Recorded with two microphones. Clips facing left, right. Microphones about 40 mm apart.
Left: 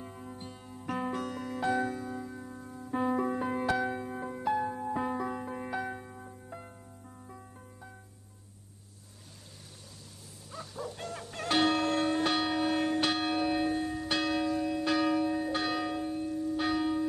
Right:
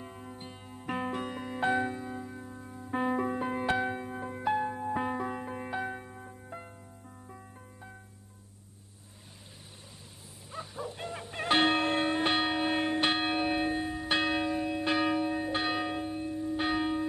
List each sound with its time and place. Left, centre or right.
0.0 s music: centre
1.7 s church bell: right
2.4 s music: centre
3.3 s music: centre
3.6 s music: right
3.9 s music: centre
10.5 s church bell: right